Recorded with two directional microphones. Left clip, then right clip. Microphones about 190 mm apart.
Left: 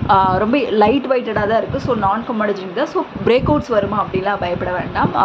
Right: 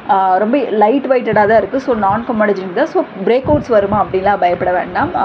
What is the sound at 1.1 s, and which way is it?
A woman's voice, 20° right (ahead or behind).